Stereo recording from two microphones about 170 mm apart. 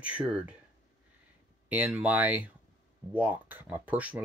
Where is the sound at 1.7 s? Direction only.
10° right (ahead or behind).